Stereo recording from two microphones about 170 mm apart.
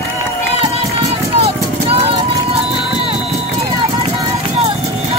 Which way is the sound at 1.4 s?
35° right (ahead or behind).